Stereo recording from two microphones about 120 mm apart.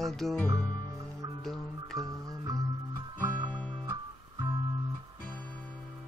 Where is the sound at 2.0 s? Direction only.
30° right (ahead or behind).